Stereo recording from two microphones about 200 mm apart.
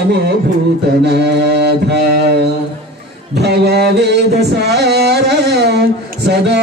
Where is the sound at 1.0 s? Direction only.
55° right (ahead or behind).